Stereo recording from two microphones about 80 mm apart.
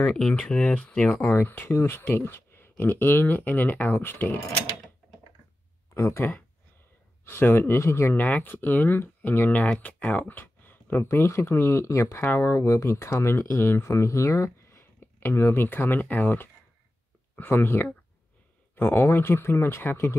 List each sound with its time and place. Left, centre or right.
0.0 s speech: centre
1.2 s speech: left
5.9 s speech: left
11.1 s speech: left